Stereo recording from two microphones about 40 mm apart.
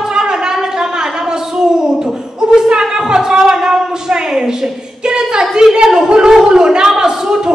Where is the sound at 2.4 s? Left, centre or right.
Centre.